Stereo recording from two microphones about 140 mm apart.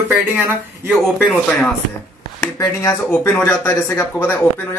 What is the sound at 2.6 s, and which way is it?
Speech, 20° left (ahead or behind).